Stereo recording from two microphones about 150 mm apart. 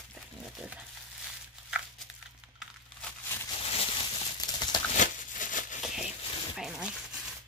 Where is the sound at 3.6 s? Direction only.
40° left (ahead or behind).